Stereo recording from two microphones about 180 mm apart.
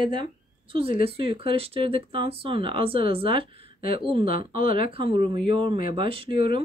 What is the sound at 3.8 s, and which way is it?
Speech, 50° left (ahead or behind).